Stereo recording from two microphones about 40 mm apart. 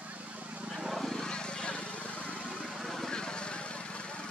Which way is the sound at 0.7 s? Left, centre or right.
Centre.